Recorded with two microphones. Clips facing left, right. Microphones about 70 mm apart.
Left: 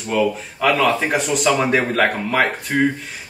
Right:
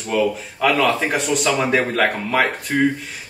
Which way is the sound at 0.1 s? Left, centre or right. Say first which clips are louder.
Even; centre.